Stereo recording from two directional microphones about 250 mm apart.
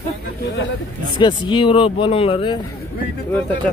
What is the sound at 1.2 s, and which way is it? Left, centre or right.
Speech, centre.